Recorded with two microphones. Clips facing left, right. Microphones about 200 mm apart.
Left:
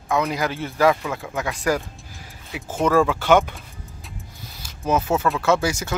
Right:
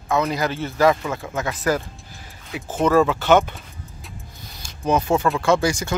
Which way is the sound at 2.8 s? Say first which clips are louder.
Right 1 dB; 10° left (ahead or behind).